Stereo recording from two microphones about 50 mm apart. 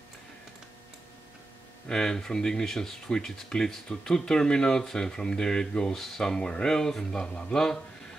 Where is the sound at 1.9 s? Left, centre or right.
Centre.